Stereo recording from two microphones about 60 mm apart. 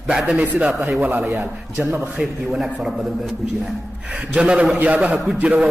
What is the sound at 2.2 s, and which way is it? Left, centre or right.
Speech, centre.